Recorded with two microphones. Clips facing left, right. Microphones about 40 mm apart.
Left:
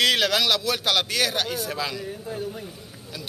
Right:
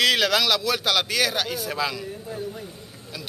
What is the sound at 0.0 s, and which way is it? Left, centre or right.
A man's voice, centre.